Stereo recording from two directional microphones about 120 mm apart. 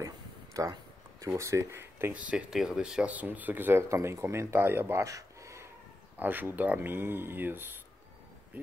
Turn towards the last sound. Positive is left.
turn(degrees=-20)  # may be behind; listen again after turning